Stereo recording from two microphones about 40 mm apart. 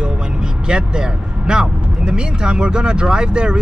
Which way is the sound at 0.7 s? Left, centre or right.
Right.